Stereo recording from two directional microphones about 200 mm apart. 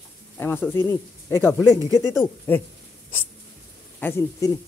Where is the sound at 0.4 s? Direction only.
10° left (ahead or behind).